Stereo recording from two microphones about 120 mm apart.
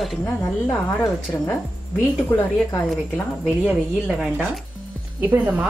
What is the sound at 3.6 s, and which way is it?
Speech, 5° right (ahead or behind).